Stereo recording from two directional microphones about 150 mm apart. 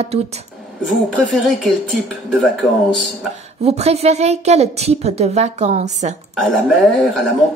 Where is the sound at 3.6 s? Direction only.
45° right (ahead or behind).